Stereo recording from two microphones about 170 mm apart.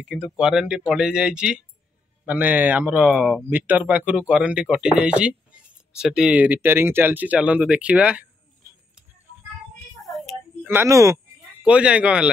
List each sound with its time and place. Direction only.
0.0 s speech: 5° right (ahead or behind)
10.0 s a sound: centre (ahead or behind)
10.7 s speech: 15° right (ahead or behind)
11.6 s speech: 5° right (ahead or behind)